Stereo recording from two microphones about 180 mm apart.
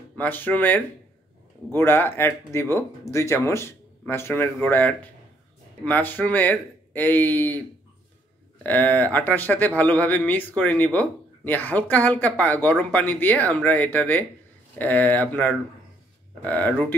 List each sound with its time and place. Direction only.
0.1 s speech: 10° left (ahead or behind)
8.6 s speech: 10° left (ahead or behind)